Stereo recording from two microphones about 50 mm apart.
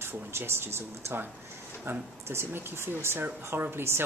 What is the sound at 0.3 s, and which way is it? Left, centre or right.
Speech, right.